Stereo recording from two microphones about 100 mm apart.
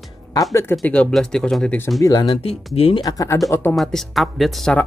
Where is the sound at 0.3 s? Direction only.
35° left (ahead or behind).